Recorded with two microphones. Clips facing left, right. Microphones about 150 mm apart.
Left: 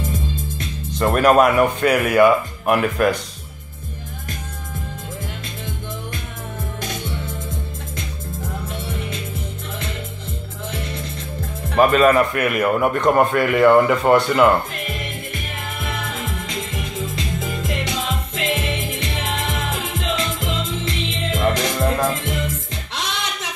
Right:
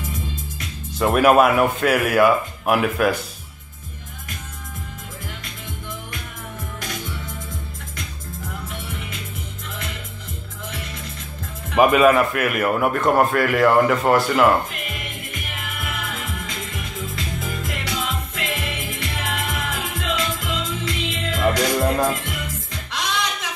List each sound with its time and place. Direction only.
0.9 s a man's voice: 5° right (ahead or behind)
11.7 s a man's voice: 10° right (ahead or behind)
16.4 s music: 20° left (ahead or behind)